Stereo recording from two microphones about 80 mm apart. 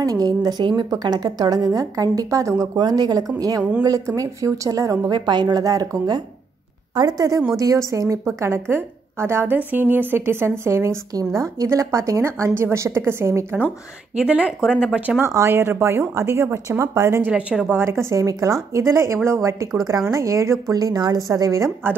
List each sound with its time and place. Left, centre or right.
0.0 s a woman's voice: right
2.8 s a woman's voice: right
5.1 s a woman's voice: right
7.5 s a woman's voice: right
8.4 s a woman's voice: right
14.1 s a woman's voice: centre
15.0 s speech: right
15.2 s a woman's voice: right
17.3 s a woman's voice: centre
17.7 s a woman's voice: right